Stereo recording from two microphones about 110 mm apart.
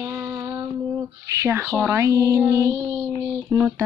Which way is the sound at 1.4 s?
20° right (ahead or behind).